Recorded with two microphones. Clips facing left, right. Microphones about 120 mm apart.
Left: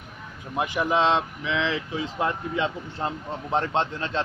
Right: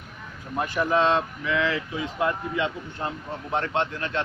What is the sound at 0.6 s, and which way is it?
Speech, 15° left (ahead or behind).